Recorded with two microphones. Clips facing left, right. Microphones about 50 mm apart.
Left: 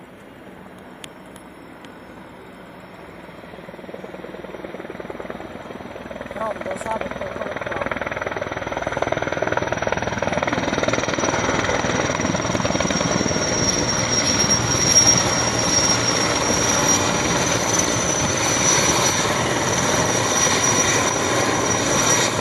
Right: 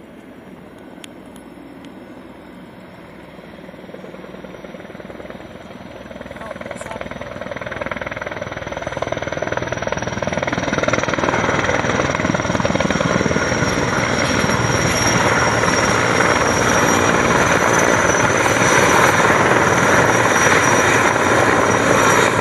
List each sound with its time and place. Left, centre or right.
6.7 s vehicle: centre; by 19.3 s right
19.3 s helicopter: right